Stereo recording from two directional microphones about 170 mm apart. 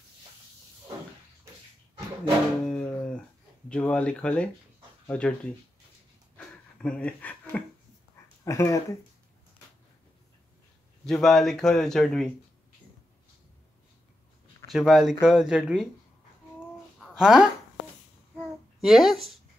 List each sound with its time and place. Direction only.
2.6 s music: 5° left (ahead or behind)
3.6 s speech: 5° left (ahead or behind)
6.3 s a sound: 5° left (ahead or behind)
8.5 s speech: 15° left (ahead or behind)
11.1 s speech: centre (ahead or behind)
14.7 s speech: centre (ahead or behind)
17.0 s a sound: centre (ahead or behind)
18.8 s speech: centre (ahead or behind)